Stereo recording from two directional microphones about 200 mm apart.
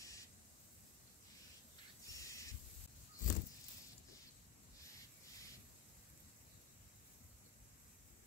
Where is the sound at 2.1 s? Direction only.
15° left (ahead or behind).